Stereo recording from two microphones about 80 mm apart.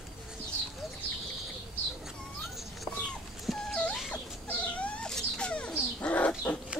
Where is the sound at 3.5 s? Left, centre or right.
Centre.